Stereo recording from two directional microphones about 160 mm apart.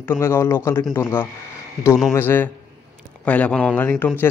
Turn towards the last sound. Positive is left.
turn(degrees=10)  # may be behind; listen again after turning